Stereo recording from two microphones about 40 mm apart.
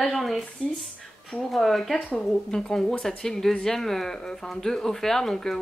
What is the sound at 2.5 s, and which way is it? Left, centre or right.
Speech, centre.